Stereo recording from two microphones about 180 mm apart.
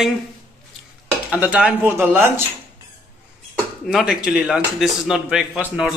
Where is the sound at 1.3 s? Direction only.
10° right (ahead or behind).